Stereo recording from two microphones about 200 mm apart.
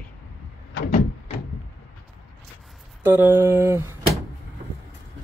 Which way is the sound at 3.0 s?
10° right (ahead or behind).